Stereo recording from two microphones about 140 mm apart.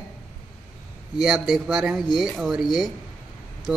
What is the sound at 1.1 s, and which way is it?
Speech, 5° right (ahead or behind).